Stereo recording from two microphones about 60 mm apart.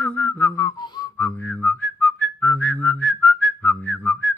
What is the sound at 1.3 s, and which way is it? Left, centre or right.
Whistling, left.